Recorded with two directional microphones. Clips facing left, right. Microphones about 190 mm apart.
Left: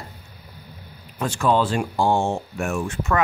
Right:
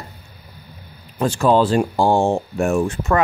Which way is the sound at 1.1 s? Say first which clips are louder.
Right 5 dB; 35° right (ahead or behind).